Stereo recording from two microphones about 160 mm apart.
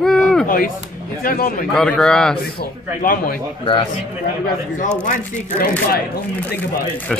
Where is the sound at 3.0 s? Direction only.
60° left (ahead or behind).